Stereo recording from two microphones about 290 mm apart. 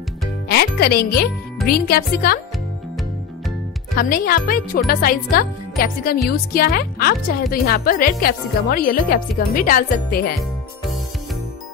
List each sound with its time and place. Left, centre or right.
0.5 s speech: left
3.9 s speech: left